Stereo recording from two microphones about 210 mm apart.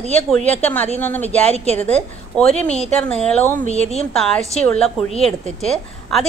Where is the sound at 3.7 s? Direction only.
30° left (ahead or behind).